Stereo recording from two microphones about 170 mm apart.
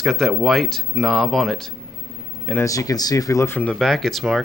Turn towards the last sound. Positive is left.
turn(degrees=0)  # may be behind; listen again after turning